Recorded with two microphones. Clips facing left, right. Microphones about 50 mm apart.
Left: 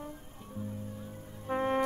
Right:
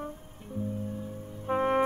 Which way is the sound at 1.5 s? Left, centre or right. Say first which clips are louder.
Right 4 dB; right.